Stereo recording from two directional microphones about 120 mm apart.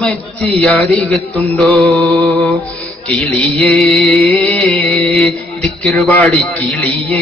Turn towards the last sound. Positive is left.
turn(degrees=10)  # may be behind; listen again after turning